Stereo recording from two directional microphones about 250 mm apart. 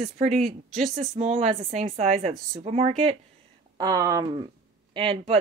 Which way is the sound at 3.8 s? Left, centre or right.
Centre.